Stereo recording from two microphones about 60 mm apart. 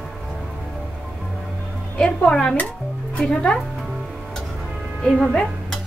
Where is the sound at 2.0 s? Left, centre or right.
Centre.